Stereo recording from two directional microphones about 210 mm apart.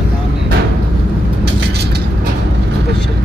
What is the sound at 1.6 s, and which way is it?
Vehicle, 50° right (ahead or behind).